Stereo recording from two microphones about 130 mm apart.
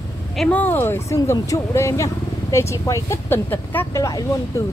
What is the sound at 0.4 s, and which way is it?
Speech, 10° left (ahead or behind).